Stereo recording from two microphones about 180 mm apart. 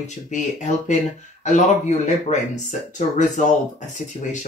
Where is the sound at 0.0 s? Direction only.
40° left (ahead or behind).